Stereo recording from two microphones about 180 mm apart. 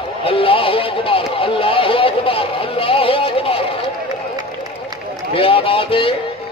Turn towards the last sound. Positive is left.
turn(degrees=30)  # may be behind; listen again after turning